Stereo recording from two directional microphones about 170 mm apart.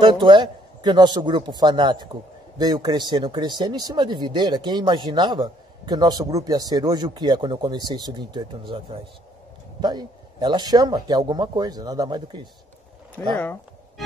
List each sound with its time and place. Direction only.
0.0 s speech: 30° right (ahead or behind)
13.2 s speech: 10° left (ahead or behind)